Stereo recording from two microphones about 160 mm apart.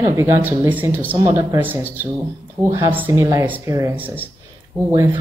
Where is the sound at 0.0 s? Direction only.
20° right (ahead or behind).